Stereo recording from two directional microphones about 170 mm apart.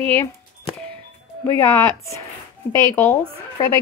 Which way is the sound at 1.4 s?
15° left (ahead or behind).